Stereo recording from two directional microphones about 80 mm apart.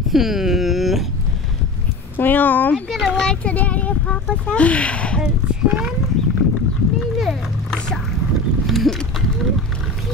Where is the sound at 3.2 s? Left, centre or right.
Centre.